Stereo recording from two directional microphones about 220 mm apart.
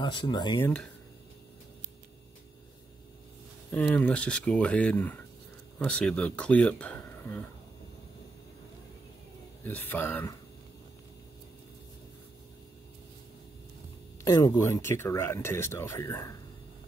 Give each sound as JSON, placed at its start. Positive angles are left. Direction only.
{"t": 0.0, "sound": "speech", "side_deg": 20}
{"t": 3.7, "sound": "speech", "side_deg": 5}
{"t": 9.7, "sound": "speech", "side_deg": 10}
{"t": 14.2, "sound": "speech", "side_deg": 15}